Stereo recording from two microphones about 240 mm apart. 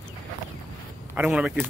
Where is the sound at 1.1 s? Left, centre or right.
Centre.